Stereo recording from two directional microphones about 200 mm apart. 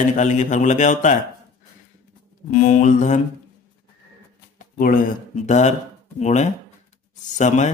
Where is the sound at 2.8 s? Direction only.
40° left (ahead or behind).